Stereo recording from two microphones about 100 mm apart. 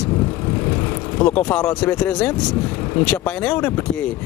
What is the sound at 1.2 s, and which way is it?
Speech, 10° left (ahead or behind).